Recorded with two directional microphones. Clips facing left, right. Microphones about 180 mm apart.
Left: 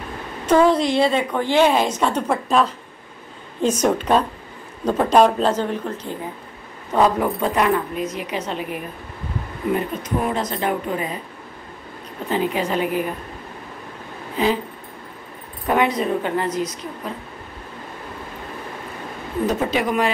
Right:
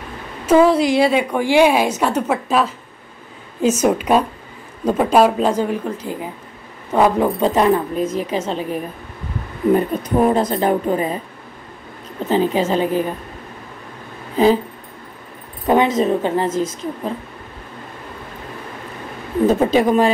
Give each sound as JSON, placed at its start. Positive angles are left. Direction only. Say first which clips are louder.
{"t": 0.5, "sound": "a woman's voice", "louder": "right 3 dB", "side_deg": -10}
{"t": 7.4, "sound": "a woman's voice", "louder": "right 4 dB", "side_deg": -30}
{"t": 12.3, "sound": "a woman's voice", "louder": "right 5 dB", "side_deg": -30}
{"t": 14.3, "sound": "speech", "louder": "right 6 dB", "side_deg": -35}
{"t": 15.6, "sound": "a woman's voice", "louder": "right 4 dB", "side_deg": -25}
{"t": 19.4, "sound": "a woman's voice", "louder": "right 7 dB", "side_deg": -30}